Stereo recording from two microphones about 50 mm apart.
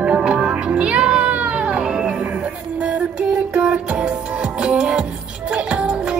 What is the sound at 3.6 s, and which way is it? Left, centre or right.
Music, centre.